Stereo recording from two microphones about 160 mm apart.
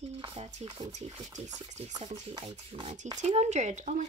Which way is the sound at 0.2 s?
35° right (ahead or behind).